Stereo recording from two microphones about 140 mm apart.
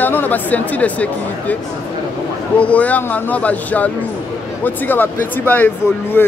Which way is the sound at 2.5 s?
10° left (ahead or behind).